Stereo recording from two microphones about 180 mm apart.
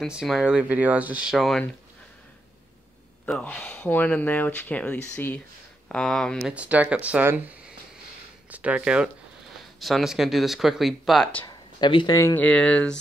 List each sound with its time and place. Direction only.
0.0 s speech: centre (ahead or behind)
3.3 s speech: 5° left (ahead or behind)
6.5 s speech: 10° right (ahead or behind)
11.4 s speech: 25° left (ahead or behind)
12.4 s speech: 5° left (ahead or behind)